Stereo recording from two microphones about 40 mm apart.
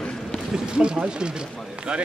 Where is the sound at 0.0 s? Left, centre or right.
Left.